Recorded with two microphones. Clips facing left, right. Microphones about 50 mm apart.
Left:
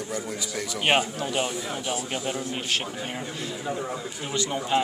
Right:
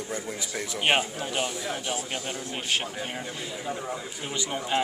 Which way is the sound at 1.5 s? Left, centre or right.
Centre.